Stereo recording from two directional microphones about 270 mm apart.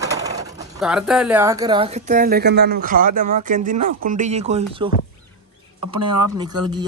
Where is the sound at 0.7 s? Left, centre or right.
Centre; by 4.9 s right.